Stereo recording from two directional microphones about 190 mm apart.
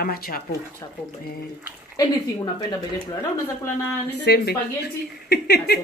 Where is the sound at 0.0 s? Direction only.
50° left (ahead or behind).